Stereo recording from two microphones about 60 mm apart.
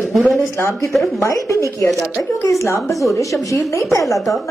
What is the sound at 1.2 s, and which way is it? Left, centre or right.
Speech, left.